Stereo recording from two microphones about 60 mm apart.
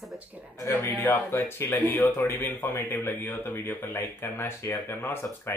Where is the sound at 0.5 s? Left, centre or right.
Left.